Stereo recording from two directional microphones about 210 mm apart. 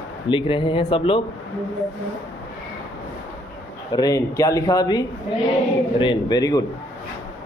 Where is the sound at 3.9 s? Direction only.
15° left (ahead or behind).